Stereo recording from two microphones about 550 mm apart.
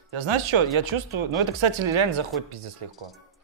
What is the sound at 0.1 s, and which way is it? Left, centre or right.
Speech, right.